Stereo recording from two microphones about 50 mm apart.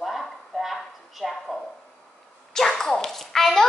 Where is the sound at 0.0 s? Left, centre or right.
Centre.